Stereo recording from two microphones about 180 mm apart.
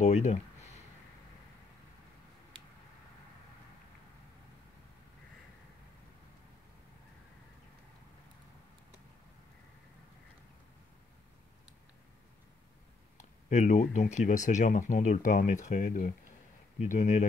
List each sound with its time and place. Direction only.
0.0 s speech: 40° left (ahead or behind)
13.2 s speech: 40° left (ahead or behind)